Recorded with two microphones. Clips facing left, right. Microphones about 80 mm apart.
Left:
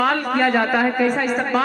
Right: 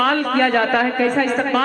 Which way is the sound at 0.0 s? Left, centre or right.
Centre.